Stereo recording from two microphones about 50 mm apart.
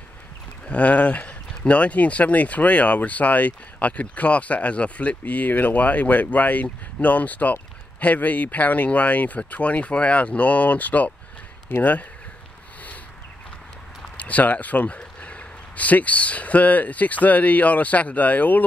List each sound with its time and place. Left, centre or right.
0.7 s speech: left
11.7 s speech: left
14.1 s speech: left